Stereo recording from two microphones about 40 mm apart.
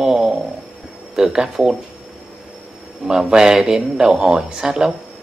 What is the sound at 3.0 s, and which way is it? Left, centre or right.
A man's voice, centre.